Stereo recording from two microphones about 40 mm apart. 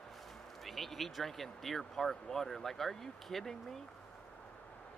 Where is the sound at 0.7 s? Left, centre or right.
Centre.